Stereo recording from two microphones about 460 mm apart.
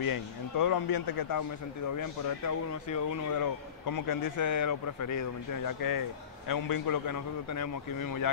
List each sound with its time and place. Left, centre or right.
0.0 s a man's voice: left